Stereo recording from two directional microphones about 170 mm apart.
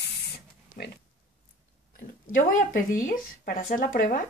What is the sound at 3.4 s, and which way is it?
Speech, 60° left (ahead or behind).